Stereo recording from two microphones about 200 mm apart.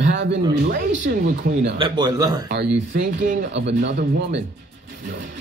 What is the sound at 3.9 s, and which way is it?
Speech, 40° right (ahead or behind).